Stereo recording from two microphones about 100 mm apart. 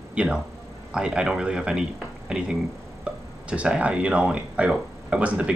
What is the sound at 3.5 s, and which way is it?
Speech, 10° right (ahead or behind).